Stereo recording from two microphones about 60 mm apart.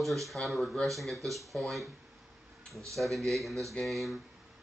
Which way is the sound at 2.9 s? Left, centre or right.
Centre.